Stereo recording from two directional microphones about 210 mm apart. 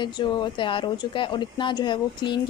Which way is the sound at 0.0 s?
20° left (ahead or behind).